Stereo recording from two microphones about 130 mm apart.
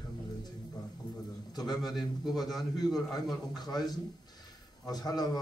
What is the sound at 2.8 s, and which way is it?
A man's voice, 30° left (ahead or behind).